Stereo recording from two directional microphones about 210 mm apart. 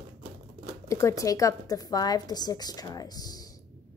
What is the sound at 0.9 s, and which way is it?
A woman's voice, 15° left (ahead or behind).